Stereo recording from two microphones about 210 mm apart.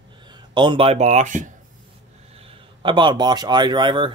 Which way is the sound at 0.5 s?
25° right (ahead or behind).